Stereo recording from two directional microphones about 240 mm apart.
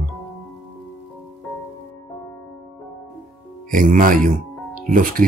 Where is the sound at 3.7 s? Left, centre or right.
Right.